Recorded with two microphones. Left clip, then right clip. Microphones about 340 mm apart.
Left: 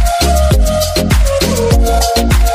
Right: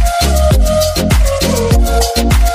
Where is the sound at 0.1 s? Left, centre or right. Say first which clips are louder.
Left 1 dB; centre.